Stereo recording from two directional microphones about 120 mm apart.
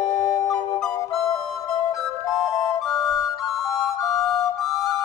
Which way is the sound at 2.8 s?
Centre (ahead or behind).